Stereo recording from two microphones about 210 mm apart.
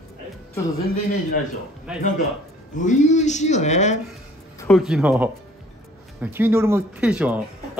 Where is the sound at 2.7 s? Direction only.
35° left (ahead or behind).